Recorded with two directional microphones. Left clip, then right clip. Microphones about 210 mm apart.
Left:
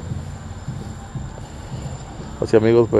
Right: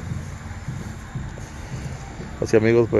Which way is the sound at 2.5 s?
Centre (ahead or behind).